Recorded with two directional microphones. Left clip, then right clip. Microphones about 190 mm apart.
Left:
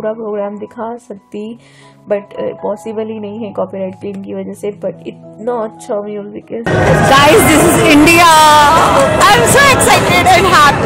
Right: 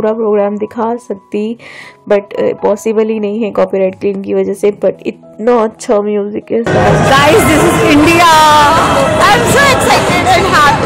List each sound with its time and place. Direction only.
0.0 s a woman's voice: 35° right (ahead or behind)
7.1 s speech: 15° left (ahead or behind)